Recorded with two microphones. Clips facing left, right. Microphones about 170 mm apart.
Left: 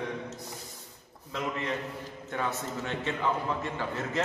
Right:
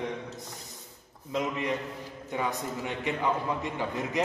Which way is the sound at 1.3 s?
15° right (ahead or behind).